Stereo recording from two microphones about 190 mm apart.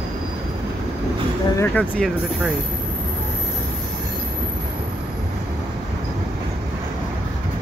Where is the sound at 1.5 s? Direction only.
10° left (ahead or behind).